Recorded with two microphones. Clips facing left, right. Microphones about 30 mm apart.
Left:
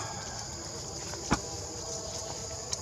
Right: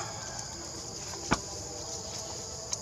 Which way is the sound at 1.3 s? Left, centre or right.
Centre.